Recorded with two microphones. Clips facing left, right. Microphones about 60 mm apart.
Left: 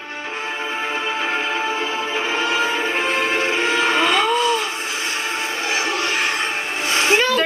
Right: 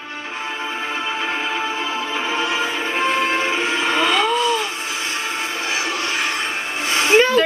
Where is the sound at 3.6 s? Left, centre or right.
Left.